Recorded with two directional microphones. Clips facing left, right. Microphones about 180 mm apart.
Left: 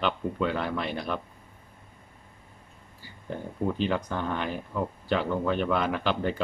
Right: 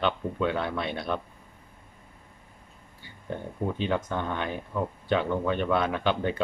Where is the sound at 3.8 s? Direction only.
Centre (ahead or behind).